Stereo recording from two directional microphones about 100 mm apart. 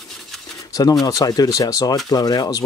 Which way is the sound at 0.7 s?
40° left (ahead or behind).